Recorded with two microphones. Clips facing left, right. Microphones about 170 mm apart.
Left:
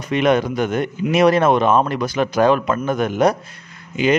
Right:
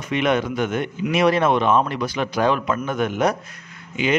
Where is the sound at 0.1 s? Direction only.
40° left (ahead or behind).